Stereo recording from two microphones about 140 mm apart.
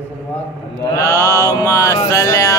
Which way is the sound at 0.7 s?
25° left (ahead or behind).